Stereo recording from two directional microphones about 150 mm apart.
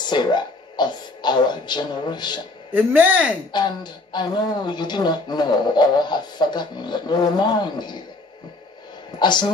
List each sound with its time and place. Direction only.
0.0 s speech: 30° left (ahead or behind)
2.7 s speech: 10° right (ahead or behind)
3.5 s speech: 30° left (ahead or behind)
9.2 s speech: 30° left (ahead or behind)